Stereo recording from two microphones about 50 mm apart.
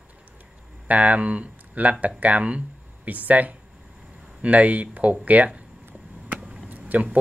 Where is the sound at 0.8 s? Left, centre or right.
Right.